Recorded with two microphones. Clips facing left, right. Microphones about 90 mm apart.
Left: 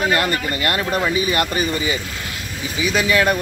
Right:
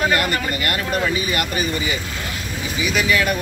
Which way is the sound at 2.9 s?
35° left (ahead or behind).